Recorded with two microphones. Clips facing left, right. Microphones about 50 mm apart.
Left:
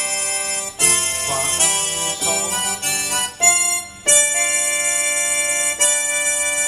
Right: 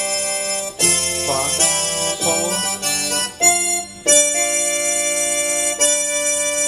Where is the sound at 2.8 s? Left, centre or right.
Left.